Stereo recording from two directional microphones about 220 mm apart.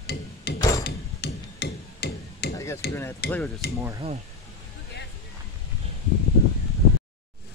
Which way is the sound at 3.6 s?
45° left (ahead or behind).